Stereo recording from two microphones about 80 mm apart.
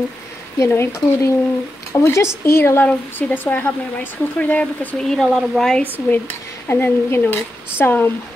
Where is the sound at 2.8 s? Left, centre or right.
Left; by 5.9 s centre.